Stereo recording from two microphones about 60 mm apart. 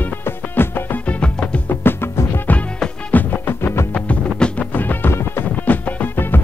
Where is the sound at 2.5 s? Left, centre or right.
Left.